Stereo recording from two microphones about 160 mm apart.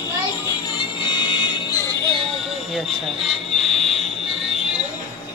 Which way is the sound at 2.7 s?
Centre (ahead or behind).